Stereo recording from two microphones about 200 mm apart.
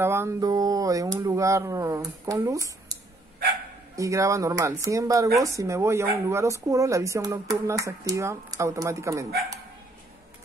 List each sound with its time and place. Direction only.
0.0 s speech: 15° right (ahead or behind)